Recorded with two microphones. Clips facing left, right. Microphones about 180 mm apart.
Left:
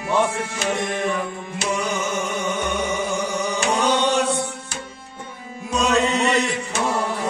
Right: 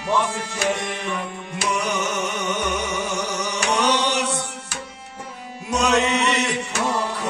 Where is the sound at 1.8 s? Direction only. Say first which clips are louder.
Even; 70° right (ahead or behind).